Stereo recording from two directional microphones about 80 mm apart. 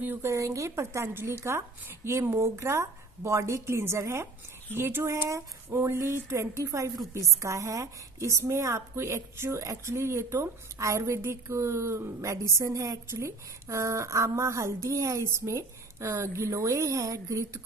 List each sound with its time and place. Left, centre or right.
0.0 s a woman's voice: right